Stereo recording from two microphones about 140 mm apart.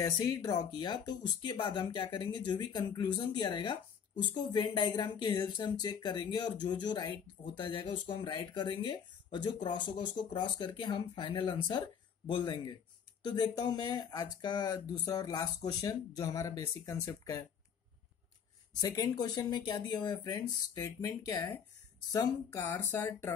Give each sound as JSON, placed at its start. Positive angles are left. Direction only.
{"t": 0.0, "sound": "speech", "side_deg": 25}
{"t": 18.8, "sound": "speech", "side_deg": 25}